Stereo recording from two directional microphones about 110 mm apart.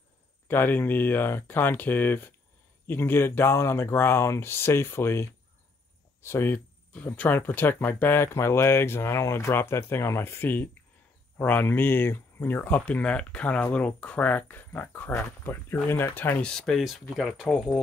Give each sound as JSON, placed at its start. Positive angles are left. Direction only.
{"t": 0.5, "sound": "speech", "side_deg": 20}